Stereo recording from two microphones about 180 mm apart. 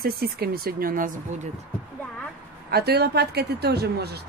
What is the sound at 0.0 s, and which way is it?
Speech, 60° right (ahead or behind).